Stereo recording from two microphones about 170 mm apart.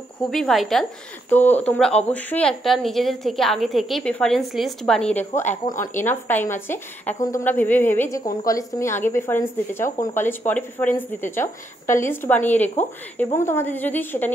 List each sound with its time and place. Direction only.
0.3 s a woman's voice: centre (ahead or behind)
5.5 s speech: 50° left (ahead or behind)
5.9 s speech: 10° left (ahead or behind)